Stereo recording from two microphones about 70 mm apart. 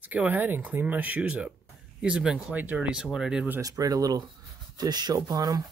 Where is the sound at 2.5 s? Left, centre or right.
Right.